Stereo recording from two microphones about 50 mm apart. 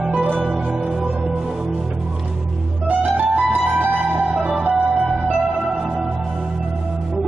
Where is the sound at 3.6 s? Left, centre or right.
Right.